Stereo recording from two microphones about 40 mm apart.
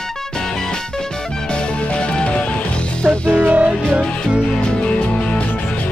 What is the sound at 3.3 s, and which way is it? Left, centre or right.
Music, right.